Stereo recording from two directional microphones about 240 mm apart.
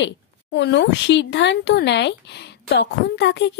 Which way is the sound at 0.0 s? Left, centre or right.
Left.